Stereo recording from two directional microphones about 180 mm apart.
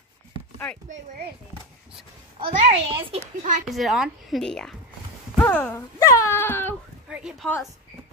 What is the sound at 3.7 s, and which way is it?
A woman's voice, centre (ahead or behind).